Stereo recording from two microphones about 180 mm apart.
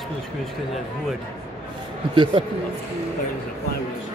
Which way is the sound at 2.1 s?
25° right (ahead or behind).